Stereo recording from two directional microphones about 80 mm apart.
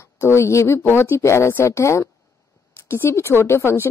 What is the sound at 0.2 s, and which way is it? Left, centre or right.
A woman's voice, left.